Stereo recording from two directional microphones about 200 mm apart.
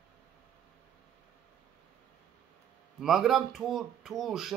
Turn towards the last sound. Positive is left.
turn(degrees=0)  # may be behind; listen again after turning